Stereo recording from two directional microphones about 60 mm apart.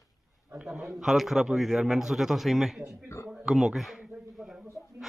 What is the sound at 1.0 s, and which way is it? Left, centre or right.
Speech, centre.